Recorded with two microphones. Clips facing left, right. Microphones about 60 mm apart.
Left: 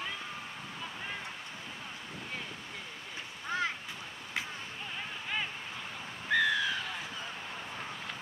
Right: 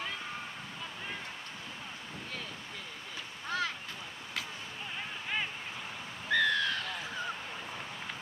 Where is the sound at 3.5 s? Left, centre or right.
Left.